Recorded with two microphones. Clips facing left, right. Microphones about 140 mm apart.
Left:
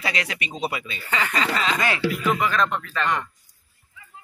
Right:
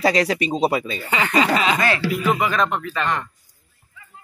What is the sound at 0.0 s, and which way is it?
Speech, 35° right (ahead or behind).